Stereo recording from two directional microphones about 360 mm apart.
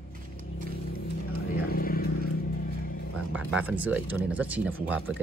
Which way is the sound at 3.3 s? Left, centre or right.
Centre.